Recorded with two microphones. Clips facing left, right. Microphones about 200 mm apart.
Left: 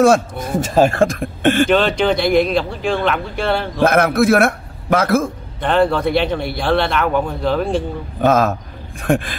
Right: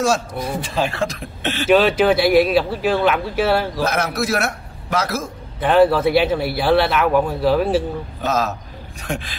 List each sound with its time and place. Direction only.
0.0 s speech: 50° left (ahead or behind)
1.7 s speech: 5° right (ahead or behind)
3.8 s a man's voice: 55° left (ahead or behind)
5.6 s speech: 5° right (ahead or behind)
8.2 s a man's voice: 55° left (ahead or behind)